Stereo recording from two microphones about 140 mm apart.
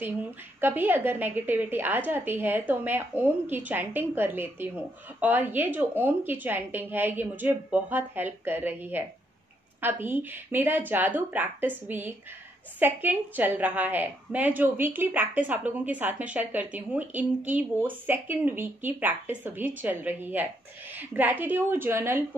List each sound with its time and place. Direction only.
0.6 s a woman's voice: 15° right (ahead or behind)